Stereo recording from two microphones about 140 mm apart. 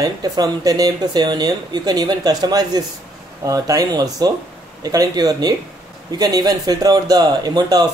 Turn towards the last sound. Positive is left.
turn(degrees=-30)  # may be behind; listen again after turning